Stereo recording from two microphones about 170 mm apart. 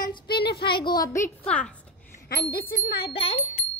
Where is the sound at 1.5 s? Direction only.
5° left (ahead or behind).